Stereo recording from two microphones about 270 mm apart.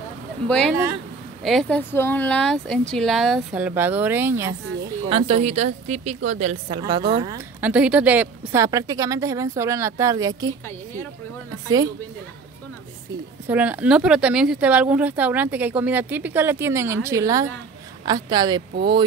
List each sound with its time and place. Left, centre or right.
0.5 s speech: centre
5.0 s a woman's voice: right
11.6 s speech: centre
13.5 s speech: centre